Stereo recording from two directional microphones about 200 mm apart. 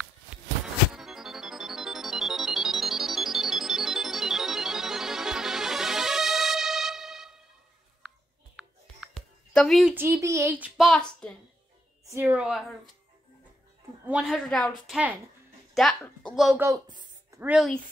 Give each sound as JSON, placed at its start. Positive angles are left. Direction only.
{"t": 0.9, "sound": "music", "side_deg": 0}
{"t": 8.5, "sound": "music", "side_deg": 0}
{"t": 9.9, "sound": "a child's voice", "side_deg": -15}
{"t": 10.8, "sound": "a woman's voice", "side_deg": 5}
{"t": 12.1, "sound": "a woman's voice", "side_deg": -10}
{"t": 14.0, "sound": "a woman's voice", "side_deg": -5}
{"t": 16.5, "sound": "a sound", "side_deg": -15}
{"t": 17.4, "sound": "a woman's voice", "side_deg": -5}